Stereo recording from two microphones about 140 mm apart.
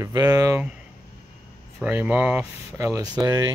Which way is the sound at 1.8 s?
10° right (ahead or behind).